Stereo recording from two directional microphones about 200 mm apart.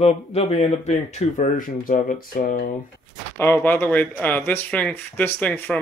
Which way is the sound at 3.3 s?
10° left (ahead or behind).